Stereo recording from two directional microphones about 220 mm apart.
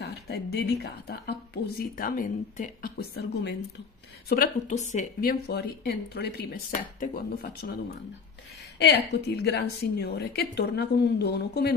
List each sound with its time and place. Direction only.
0.0 s a woman's voice: 45° left (ahead or behind)
4.3 s a woman's voice: 35° left (ahead or behind)
8.7 s a woman's voice: 50° left (ahead or behind)